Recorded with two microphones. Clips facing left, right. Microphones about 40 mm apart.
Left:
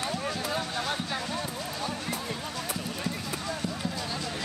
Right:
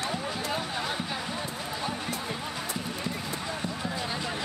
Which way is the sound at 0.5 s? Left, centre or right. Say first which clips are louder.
Left 1 dB; centre.